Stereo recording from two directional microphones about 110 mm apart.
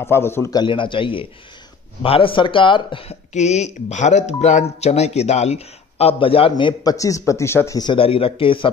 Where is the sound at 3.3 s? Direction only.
90° left; by 6.7 s 55° left (ahead or behind).